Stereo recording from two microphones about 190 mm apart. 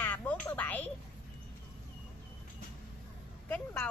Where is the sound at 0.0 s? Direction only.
10° left (ahead or behind).